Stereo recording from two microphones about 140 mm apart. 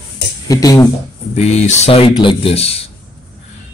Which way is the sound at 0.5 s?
25° left (ahead or behind).